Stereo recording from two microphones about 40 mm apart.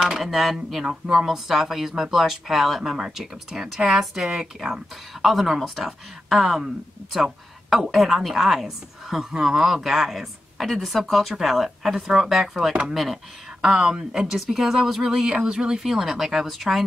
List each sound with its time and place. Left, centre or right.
0.0 s speech: centre
0.8 s speech: centre
13.6 s speech: centre
14.2 s speech: centre
15.2 s a sound: right
15.8 s speech: centre